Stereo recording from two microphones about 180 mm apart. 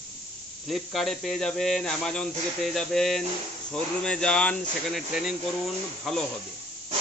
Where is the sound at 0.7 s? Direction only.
Centre (ahead or behind).